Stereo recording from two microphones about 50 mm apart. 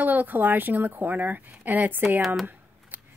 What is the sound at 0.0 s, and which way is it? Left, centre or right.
Speech, right.